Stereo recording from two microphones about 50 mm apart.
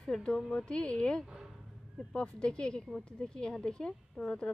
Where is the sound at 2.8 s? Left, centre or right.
Centre.